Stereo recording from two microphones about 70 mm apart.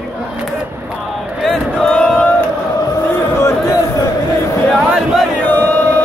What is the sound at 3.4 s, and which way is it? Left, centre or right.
Music, left.